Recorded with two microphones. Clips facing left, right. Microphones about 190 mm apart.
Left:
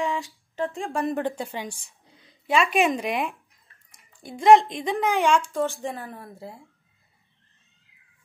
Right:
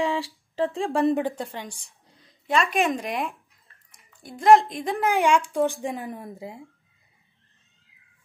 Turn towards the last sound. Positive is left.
turn(degrees=-15)  # may be behind; listen again after turning